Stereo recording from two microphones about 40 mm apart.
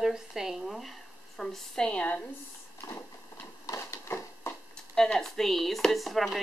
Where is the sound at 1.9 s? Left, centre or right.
Left.